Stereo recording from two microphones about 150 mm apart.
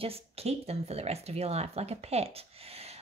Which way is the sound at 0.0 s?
40° right (ahead or behind).